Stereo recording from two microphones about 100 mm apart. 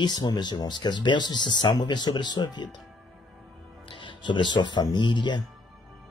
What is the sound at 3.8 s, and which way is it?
Speech, 55° left (ahead or behind).